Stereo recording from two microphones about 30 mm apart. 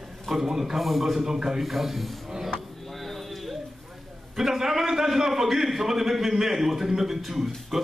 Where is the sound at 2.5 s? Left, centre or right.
Centre.